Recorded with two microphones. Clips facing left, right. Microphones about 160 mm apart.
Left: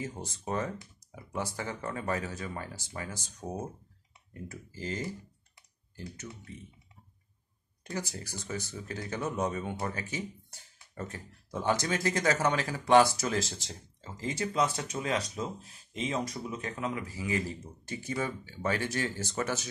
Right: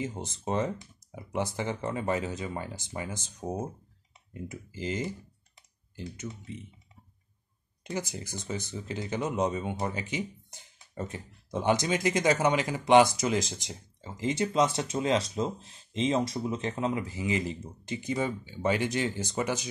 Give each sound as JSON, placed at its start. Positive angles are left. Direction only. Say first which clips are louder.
{"t": 0.0, "sound": "speech", "louder": "right 4 dB", "side_deg": -20}
{"t": 7.8, "sound": "speech", "louder": "right 3 dB", "side_deg": -20}